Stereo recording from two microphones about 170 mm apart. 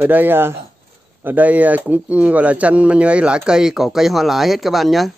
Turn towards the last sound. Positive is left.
turn(degrees=0)  # may be behind; listen again after turning